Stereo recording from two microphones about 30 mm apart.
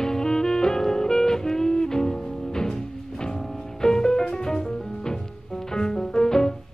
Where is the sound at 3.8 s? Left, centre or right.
Centre.